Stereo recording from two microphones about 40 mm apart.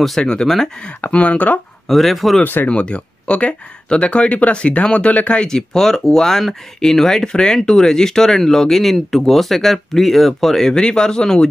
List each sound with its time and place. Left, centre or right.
0.2 s speech: left
1.1 s speech: left
1.9 s speech: centre
2.4 s speech: left
2.7 s speech: left
5.5 s speech: centre
10.7 s speech: left